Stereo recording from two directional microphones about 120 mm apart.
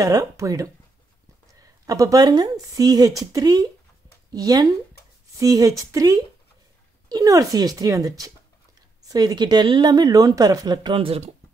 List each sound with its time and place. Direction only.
0.0 s speech: 30° right (ahead or behind); by 11.3 s 55° right (ahead or behind)